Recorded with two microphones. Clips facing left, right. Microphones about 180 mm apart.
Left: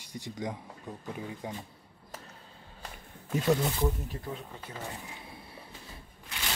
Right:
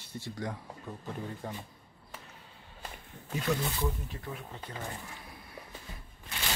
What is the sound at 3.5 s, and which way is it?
Speech, 40° left (ahead or behind).